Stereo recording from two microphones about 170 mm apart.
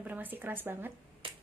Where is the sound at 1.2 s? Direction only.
30° right (ahead or behind).